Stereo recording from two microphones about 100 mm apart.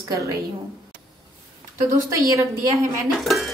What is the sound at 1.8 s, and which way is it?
A woman's voice, 35° right (ahead or behind).